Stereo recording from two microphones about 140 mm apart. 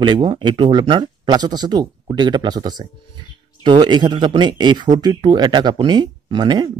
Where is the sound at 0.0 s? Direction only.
35° right (ahead or behind).